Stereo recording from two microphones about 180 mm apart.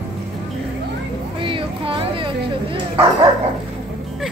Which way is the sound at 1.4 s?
30° right (ahead or behind).